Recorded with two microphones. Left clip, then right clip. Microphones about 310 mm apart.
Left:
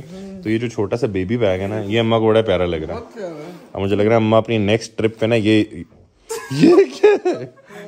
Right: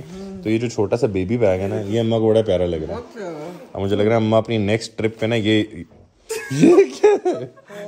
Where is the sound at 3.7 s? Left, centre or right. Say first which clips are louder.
Left 2 dB; left.